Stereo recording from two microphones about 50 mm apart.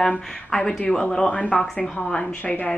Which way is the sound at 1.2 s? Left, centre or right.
Left.